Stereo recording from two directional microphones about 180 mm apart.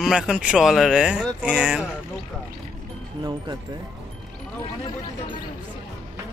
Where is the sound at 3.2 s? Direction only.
25° right (ahead or behind).